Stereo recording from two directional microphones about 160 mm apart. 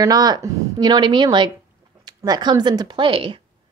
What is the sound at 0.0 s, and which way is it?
Speech, 25° right (ahead or behind).